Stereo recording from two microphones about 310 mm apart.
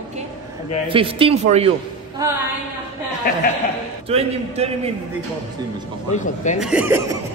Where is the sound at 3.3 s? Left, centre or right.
Left.